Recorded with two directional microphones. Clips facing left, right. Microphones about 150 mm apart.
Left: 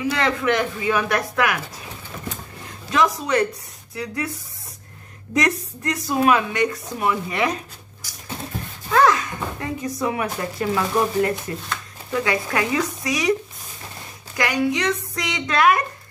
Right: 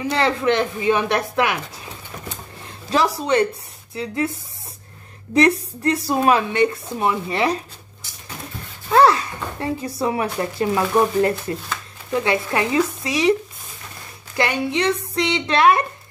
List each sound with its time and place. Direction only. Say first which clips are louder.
0.1 s speech: right 4 dB; 30° right (ahead or behind)
2.9 s speech: right 1 dB; 30° right (ahead or behind)
8.9 s speech: right 3 dB; 30° right (ahead or behind)
14.3 s speech: even; 30° right (ahead or behind)